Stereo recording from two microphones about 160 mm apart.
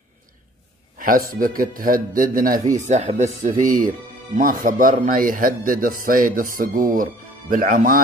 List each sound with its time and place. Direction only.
0.9 s a man's voice: 60° right (ahead or behind)
2.6 s a man's voice: 50° right (ahead or behind)